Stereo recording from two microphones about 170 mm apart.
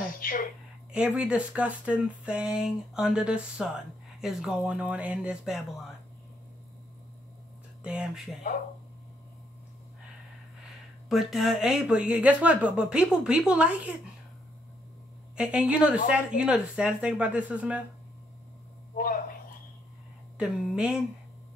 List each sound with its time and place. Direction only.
0.2 s speech: 55° left (ahead or behind)
0.9 s speech: 5° right (ahead or behind)
7.8 s speech: 5° right (ahead or behind)
11.1 s speech: centre (ahead or behind)
15.3 s speech: 5° right (ahead or behind)
18.9 s a sound: 55° left (ahead or behind)
20.3 s speech: 5° right (ahead or behind)